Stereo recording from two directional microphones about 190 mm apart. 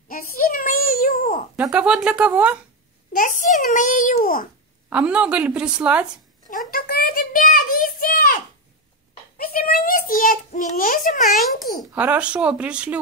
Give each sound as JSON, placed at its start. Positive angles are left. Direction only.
{"t": 0.1, "sound": "child singing", "side_deg": 50}
{"t": 1.6, "sound": "a woman's voice", "side_deg": -5}
{"t": 3.2, "sound": "a child's voice", "side_deg": 45}
{"t": 4.8, "sound": "a woman's voice", "side_deg": -5}
{"t": 6.7, "sound": "child singing", "side_deg": 50}
{"t": 9.4, "sound": "a sound", "side_deg": 50}
{"t": 11.2, "sound": "a woman's voice", "side_deg": 0}